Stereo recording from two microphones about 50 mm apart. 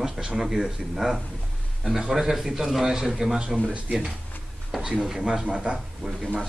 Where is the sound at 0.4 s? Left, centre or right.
Centre.